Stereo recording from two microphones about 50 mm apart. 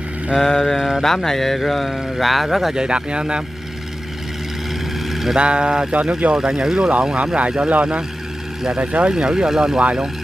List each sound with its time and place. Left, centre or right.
0.4 s mantra: centre
0.7 s speech: centre
1.0 s speech: centre
2.7 s speech: centre
5.1 s vehicle: centre
5.4 s speech: centre